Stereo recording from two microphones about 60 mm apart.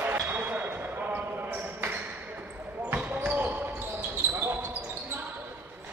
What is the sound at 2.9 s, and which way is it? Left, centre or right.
Basketball bounce, right.